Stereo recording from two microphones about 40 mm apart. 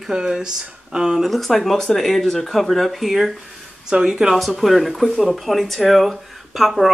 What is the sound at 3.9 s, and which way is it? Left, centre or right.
Speech, centre.